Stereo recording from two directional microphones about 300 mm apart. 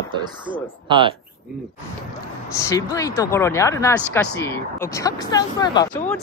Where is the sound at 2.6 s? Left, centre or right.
Centre.